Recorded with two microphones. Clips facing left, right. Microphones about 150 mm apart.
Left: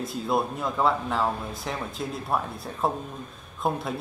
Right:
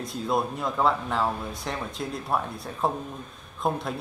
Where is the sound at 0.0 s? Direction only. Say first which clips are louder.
Left 1 dB; centre (ahead or behind).